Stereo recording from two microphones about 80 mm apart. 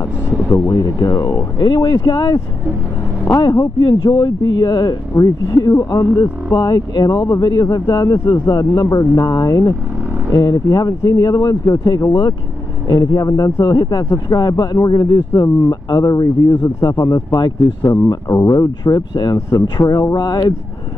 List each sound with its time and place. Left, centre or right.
0.5 s speech: left
1.6 s speech: left
3.3 s speech: left
19.8 s speech: left